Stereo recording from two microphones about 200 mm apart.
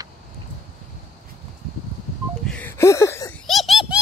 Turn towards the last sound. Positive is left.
turn(degrees=0)  # may be behind; listen again after turning